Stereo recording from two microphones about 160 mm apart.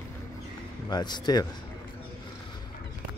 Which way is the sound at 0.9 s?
25° left (ahead or behind).